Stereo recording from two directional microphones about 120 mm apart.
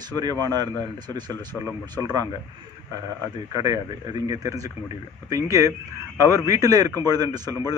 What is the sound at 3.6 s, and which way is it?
A man's voice, 30° right (ahead or behind).